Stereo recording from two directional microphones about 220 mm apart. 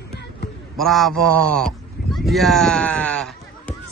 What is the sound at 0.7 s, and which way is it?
A man's voice, centre (ahead or behind).